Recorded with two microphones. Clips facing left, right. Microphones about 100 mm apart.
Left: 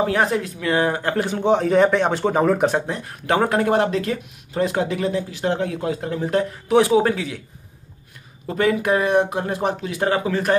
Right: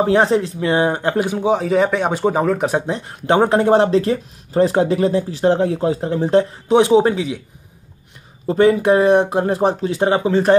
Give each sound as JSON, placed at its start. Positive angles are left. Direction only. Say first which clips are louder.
{"t": 0.0, "sound": "speech", "louder": "right 5 dB", "side_deg": -30}
{"t": 2.9, "sound": "speech", "louder": "right 4 dB", "side_deg": -25}
{"t": 8.5, "sound": "speech", "louder": "right 6 dB", "side_deg": -30}